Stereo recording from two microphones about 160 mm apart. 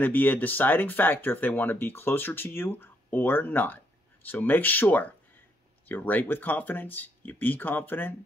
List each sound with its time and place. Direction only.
0.0 s speech: 10° left (ahead or behind)